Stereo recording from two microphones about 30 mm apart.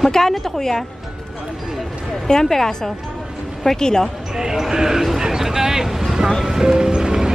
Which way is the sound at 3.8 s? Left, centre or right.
Left.